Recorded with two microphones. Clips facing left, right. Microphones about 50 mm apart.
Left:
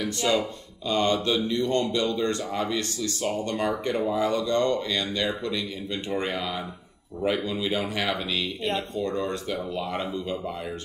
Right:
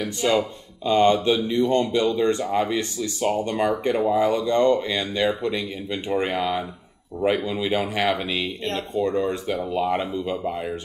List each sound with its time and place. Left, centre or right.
0.0 s speech: centre
0.4 s speech: right
7.2 s speech: right
7.4 s speech: centre